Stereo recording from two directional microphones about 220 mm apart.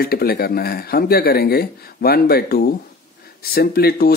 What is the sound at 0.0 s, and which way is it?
Speech, 45° left (ahead or behind).